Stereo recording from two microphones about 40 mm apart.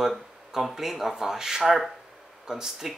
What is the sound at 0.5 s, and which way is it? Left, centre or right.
Speech, centre.